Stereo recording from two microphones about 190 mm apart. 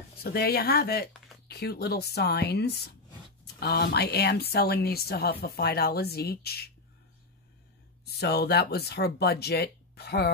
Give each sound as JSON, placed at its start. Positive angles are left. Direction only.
{"t": 0.2, "sound": "speech", "side_deg": 55}
{"t": 8.0, "sound": "speech", "side_deg": 60}